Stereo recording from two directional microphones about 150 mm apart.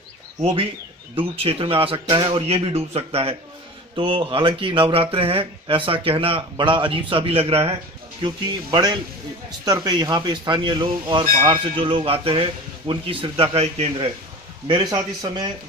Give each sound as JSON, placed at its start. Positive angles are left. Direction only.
{"t": 1.1, "sound": "speech", "side_deg": -40}
{"t": 8.2, "sound": "speech", "side_deg": -25}
{"t": 14.7, "sound": "speech", "side_deg": -30}